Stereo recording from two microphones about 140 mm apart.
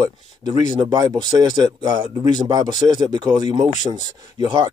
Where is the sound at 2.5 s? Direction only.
30° right (ahead or behind).